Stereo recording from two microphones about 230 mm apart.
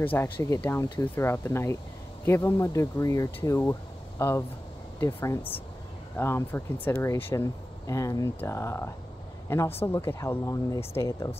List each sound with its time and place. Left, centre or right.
0.0 s speech: centre
10.8 s speech: left
11.1 s speech: centre